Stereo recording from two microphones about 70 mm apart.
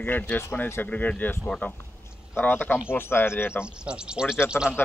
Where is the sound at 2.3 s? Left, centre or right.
Left.